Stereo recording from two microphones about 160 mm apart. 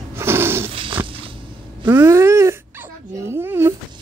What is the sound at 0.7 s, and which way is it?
Dog, 35° right (ahead or behind).